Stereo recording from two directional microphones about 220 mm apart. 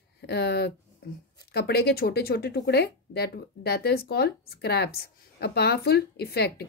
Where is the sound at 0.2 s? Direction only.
45° left (ahead or behind).